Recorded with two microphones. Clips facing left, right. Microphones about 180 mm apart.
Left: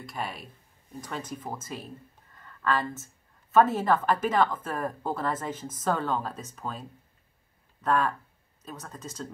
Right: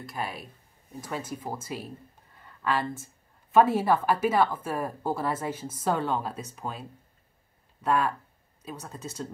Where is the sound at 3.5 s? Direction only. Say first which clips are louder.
Right 1 dB; 10° right (ahead or behind).